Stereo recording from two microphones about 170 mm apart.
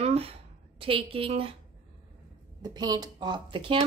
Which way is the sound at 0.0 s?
35° right (ahead or behind).